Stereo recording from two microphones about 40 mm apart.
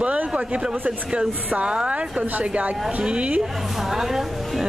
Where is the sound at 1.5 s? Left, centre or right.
Right.